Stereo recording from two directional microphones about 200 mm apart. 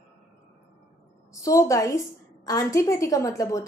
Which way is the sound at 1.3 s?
15° left (ahead or behind).